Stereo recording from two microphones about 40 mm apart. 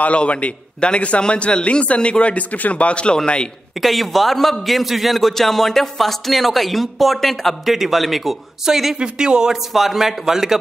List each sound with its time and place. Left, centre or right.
0.0 s a man's voice: left
3.8 s a man's voice: centre
9.0 s speech: right
9.7 s a man's voice: centre